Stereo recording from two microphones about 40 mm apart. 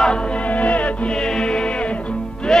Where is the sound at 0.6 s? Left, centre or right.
Left.